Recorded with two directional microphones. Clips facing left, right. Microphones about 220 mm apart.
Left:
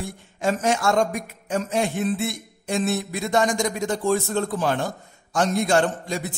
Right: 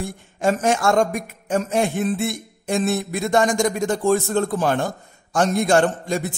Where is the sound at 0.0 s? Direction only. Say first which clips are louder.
Right 4 dB; 50° right (ahead or behind).